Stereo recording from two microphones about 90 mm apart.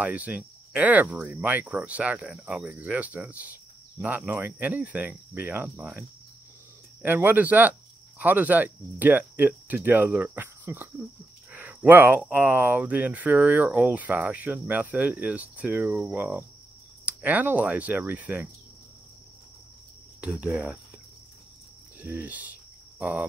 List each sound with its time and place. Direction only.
0.0 s speech: 15° right (ahead or behind)
7.0 s speech: 20° right (ahead or behind)
20.2 s speech: 15° right (ahead or behind)
22.0 s speech: 20° right (ahead or behind)
22.9 s a sound: 20° right (ahead or behind)